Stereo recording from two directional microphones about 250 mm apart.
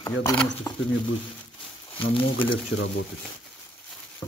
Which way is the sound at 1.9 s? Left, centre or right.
Left.